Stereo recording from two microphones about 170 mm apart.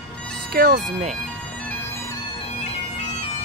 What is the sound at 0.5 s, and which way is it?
Speech, 55° right (ahead or behind).